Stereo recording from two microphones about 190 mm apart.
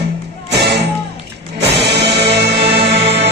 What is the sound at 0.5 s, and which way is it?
Music, 65° right (ahead or behind).